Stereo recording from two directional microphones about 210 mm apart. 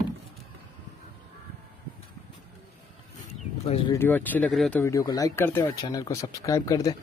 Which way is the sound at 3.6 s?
25° left (ahead or behind).